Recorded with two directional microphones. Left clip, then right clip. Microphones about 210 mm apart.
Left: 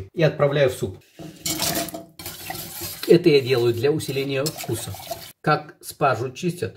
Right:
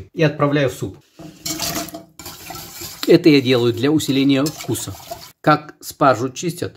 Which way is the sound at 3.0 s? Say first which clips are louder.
Right 3 dB; 45° right (ahead or behind).